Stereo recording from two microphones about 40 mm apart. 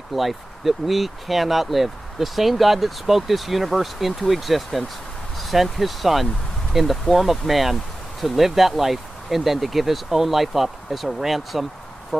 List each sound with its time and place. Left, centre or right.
0.1 s speech: centre